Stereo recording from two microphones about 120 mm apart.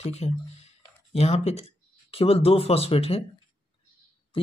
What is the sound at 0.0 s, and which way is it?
Speech, 60° left (ahead or behind).